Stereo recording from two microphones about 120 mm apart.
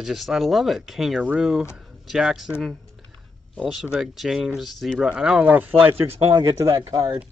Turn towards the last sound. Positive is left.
turn(degrees=-30)  # may be behind; listen again after turning